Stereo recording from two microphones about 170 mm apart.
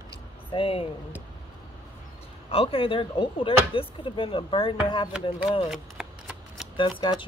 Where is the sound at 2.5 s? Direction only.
35° left (ahead or behind).